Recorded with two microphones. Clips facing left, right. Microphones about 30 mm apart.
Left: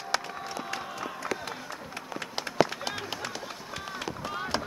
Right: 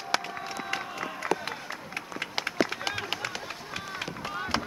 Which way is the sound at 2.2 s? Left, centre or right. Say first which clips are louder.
Left 2 dB; centre.